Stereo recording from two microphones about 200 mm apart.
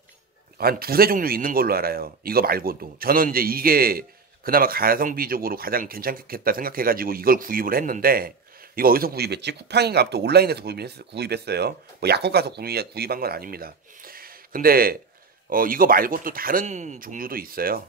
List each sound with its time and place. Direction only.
0.6 s speech: 50° right (ahead or behind)